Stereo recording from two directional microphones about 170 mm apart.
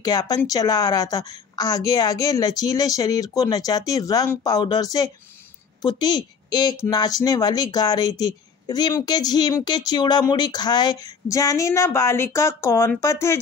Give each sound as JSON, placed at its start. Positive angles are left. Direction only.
{"t": 0.0, "sound": "speech", "side_deg": 20}